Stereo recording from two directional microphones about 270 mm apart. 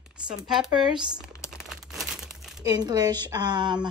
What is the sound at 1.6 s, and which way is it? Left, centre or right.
Crumpling, centre.